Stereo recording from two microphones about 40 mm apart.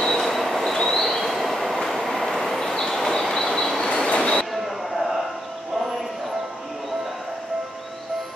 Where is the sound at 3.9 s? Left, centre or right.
Left.